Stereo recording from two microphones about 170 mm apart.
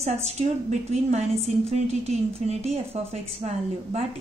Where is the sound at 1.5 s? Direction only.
45° right (ahead or behind).